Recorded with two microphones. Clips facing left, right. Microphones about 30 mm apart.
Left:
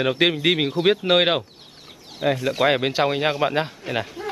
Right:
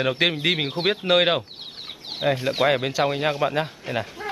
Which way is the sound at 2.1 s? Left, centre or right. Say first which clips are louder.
Even; right.